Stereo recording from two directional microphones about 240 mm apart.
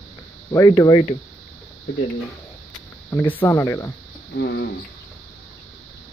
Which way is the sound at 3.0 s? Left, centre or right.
Centre.